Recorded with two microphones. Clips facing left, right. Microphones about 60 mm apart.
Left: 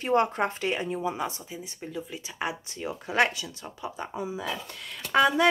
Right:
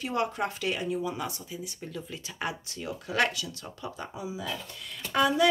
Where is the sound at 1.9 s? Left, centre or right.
Centre.